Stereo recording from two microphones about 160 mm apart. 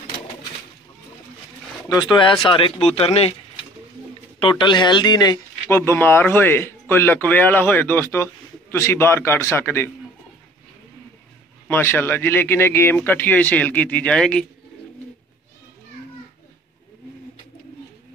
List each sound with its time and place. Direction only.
1.9 s speech: 25° left (ahead or behind)
4.4 s speech: 30° left (ahead or behind)
5.7 s speech: 15° left (ahead or behind)
11.6 s speech: 15° left (ahead or behind)